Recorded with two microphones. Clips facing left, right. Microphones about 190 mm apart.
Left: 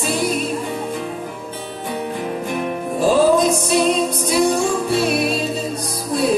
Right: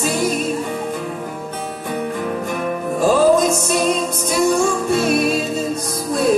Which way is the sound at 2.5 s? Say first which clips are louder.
Right 1 dB; 45° right (ahead or behind).